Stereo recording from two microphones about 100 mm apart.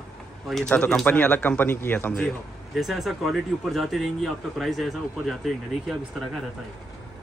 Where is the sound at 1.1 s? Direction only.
15° left (ahead or behind).